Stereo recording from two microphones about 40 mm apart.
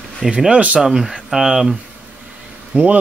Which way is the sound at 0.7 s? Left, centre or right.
Centre.